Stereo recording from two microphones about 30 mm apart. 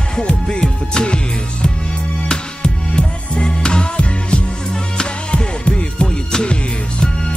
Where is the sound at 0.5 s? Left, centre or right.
Left.